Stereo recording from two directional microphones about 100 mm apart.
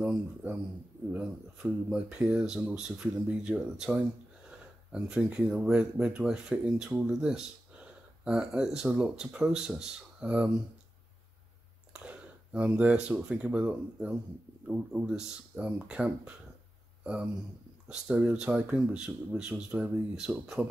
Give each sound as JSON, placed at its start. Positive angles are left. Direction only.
{"t": 0.0, "sound": "speech", "side_deg": -15}
{"t": 11.9, "sound": "speech", "side_deg": -15}